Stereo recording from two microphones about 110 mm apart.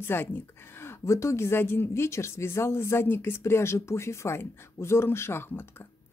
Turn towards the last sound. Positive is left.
turn(degrees=20)  # may be behind; listen again after turning